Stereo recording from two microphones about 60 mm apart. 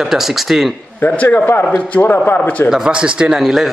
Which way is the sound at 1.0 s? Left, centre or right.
Left.